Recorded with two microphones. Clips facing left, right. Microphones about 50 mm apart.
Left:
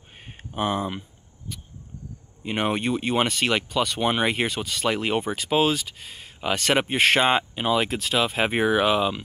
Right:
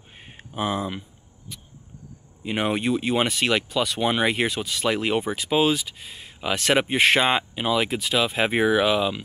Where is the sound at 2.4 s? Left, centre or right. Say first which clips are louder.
Right 1 dB; centre.